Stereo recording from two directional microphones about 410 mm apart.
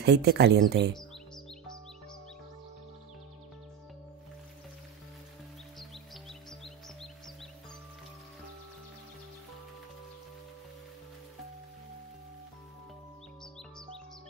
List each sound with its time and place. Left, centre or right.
0.0 s speech: right